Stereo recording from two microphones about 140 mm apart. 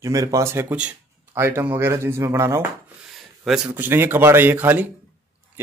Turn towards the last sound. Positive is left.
turn(degrees=-15)  # may be behind; listen again after turning